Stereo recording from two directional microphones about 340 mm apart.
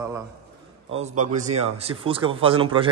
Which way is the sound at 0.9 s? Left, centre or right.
Centre.